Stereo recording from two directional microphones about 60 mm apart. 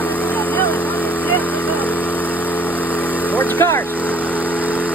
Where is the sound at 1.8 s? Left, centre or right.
Left.